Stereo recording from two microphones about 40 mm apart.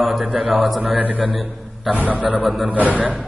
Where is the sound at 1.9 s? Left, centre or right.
Right.